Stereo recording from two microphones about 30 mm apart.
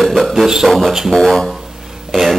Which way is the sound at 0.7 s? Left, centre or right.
Centre.